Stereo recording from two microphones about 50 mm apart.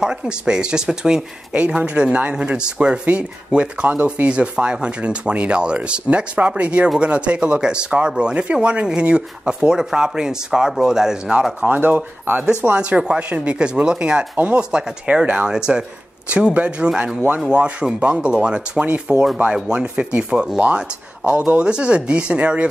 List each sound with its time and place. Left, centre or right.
0.0 s speech: centre
1.5 s speech: right
11.6 s speech: right
12.7 s speech: right
15.5 s speech: centre
16.3 s speech: right